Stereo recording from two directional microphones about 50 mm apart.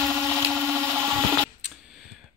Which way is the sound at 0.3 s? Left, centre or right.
Right.